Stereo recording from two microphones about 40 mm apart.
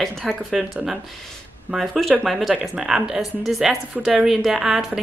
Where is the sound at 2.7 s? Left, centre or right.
Centre.